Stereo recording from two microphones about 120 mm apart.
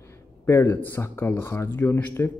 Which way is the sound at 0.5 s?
20° left (ahead or behind).